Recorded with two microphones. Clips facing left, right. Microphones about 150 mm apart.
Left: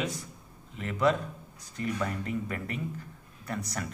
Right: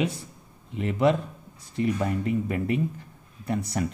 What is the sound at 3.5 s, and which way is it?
Speech, 30° right (ahead or behind).